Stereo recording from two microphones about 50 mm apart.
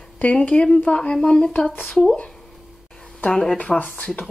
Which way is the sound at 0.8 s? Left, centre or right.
Left.